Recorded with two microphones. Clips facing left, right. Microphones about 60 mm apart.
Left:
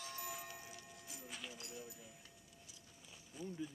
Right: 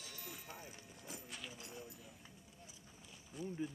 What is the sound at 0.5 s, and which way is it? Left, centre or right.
Music, right.